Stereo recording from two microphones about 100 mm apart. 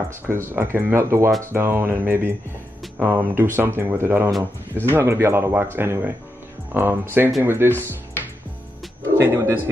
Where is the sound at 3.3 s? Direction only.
20° right (ahead or behind).